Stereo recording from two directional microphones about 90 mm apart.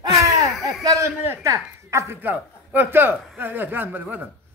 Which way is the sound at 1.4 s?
30° right (ahead or behind).